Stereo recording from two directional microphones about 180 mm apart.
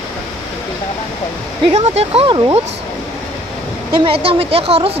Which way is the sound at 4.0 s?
30° right (ahead or behind).